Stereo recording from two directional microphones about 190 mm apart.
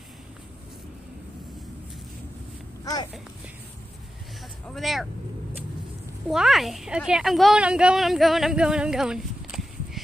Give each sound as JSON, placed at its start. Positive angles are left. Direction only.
{"t": 2.8, "sound": "a sound", "side_deg": 20}
{"t": 4.6, "sound": "speech", "side_deg": 0}
{"t": 6.2, "sound": "a woman's voice", "side_deg": 0}